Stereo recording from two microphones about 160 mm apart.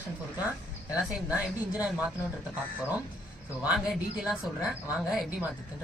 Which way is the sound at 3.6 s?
5° right (ahead or behind).